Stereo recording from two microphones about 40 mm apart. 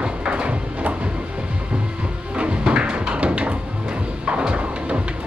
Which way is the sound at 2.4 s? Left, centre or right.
Right.